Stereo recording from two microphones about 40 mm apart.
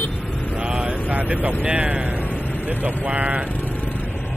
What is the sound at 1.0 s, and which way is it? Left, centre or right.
Vehicle, right.